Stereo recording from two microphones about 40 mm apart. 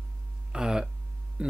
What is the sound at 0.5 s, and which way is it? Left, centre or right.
Speech, centre.